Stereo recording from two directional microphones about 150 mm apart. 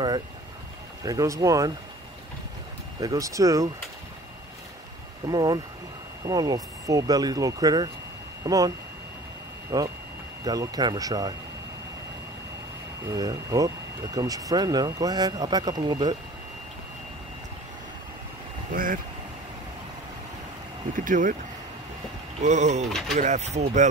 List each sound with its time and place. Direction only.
1.0 s speech: 20° right (ahead or behind)
3.0 s speech: 20° right (ahead or behind)
5.2 s speech: 25° right (ahead or behind)
13.1 s speech: 25° right (ahead or behind)
18.7 s speech: 65° right (ahead or behind)
20.9 s speech: 60° right (ahead or behind)
22.4 s speech: 50° right (ahead or behind)